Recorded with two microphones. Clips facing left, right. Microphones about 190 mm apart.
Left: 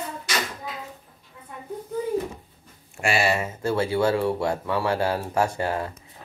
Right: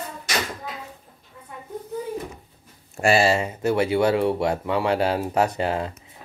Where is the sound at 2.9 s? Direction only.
35° right (ahead or behind).